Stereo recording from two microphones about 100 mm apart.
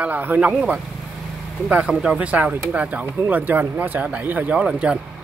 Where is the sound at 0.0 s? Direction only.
15° right (ahead or behind).